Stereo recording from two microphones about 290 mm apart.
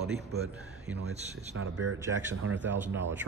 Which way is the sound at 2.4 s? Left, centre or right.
Right.